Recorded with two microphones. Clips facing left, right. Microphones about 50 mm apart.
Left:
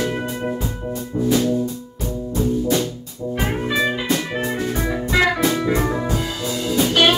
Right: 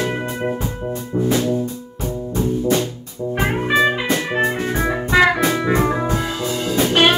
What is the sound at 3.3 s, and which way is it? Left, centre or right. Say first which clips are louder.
Music: right 4 dB; right.